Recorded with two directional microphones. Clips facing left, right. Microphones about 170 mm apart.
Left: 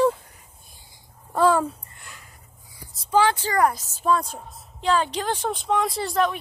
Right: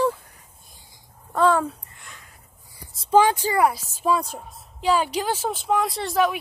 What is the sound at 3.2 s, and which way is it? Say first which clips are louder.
A woman's voice: right 1 dB; 15° right (ahead or behind).